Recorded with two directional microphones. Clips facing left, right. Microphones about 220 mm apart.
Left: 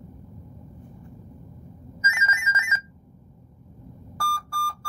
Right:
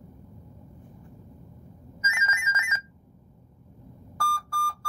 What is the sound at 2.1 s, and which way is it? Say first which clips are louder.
Music: left 3 dB; centre (ahead or behind).